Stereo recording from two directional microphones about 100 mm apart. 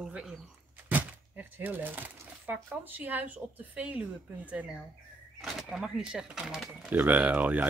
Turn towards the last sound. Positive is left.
turn(degrees=-15)  # may be behind; listen again after turning